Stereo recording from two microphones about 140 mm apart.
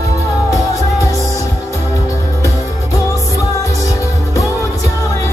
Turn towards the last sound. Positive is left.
turn(degrees=20)  # may be behind; listen again after turning